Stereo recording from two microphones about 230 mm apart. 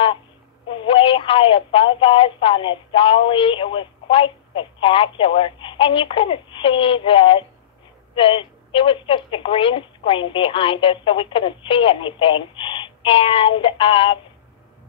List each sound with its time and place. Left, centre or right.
0.7 s speech: left